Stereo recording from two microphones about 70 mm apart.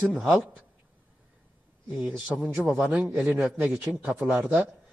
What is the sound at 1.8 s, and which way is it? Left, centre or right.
A man's voice, centre.